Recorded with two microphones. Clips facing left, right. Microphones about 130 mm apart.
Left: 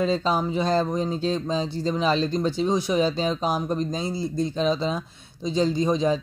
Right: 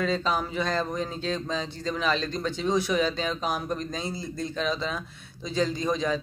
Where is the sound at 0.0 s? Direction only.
30° left (ahead or behind).